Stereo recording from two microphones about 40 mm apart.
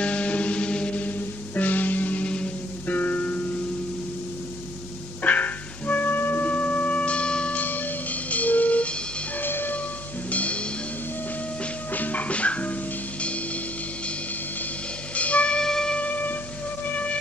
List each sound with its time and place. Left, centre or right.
0.0 s music: left
1.0 s music: left
2.2 s music: left
2.9 s music: left
5.2 s music: left
6.4 s tubular bells: left
7.5 s music: left
9.4 s music: left
10.3 s music: left
11.9 s music: left
15.1 s music: left
15.6 s music: centre
16.0 s music: left